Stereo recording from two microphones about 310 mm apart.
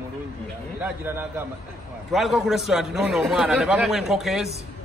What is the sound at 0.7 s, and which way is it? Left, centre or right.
A man's voice, centre.